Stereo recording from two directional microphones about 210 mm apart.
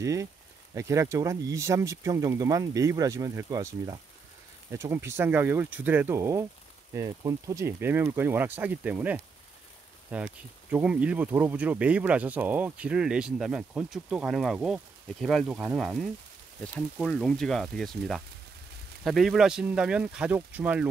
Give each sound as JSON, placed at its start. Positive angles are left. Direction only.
{"t": 0.0, "sound": "speech", "side_deg": -15}